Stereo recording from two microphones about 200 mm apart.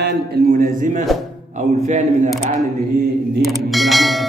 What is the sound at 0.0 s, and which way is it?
A man's voice, 50° right (ahead or behind).